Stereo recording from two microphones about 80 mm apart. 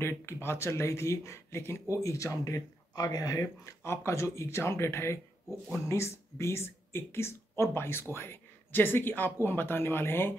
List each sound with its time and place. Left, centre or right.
0.0 s speech: left
3.8 s speech: left